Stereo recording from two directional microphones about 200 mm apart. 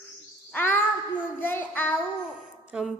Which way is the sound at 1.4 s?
10° left (ahead or behind).